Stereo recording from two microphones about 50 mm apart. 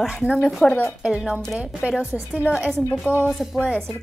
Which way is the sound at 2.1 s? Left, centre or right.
Centre.